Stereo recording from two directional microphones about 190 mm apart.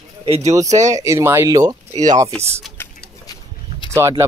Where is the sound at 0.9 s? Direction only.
15° right (ahead or behind).